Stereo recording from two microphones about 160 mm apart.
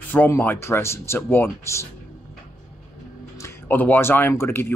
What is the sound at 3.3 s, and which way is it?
Speech, 15° left (ahead or behind).